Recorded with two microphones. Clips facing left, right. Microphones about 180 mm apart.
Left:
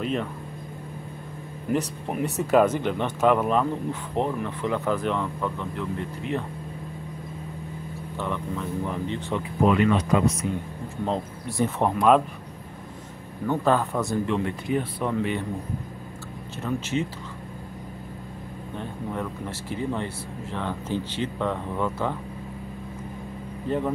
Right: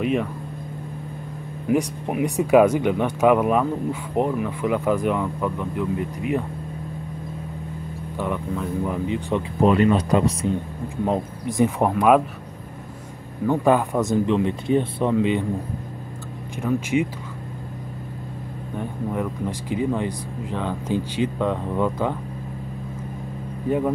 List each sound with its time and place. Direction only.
0.0 s speech: 10° right (ahead or behind)
1.7 s speech: 10° right (ahead or behind)
8.2 s speech: 10° right (ahead or behind)
9.6 s speech: 35° right (ahead or behind)
11.1 s speech: 15° right (ahead or behind)
13.5 s speech: 15° right (ahead or behind)
16.5 s speech: 10° right (ahead or behind)
18.8 s speech: 15° right (ahead or behind)